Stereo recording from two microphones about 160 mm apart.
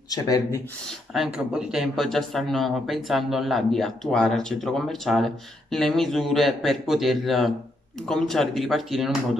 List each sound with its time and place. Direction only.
0.1 s speech: 20° left (ahead or behind)
0.8 s speech: centre (ahead or behind)